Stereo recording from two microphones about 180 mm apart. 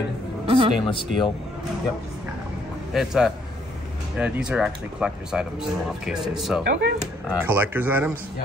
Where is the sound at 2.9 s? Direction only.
Centre (ahead or behind).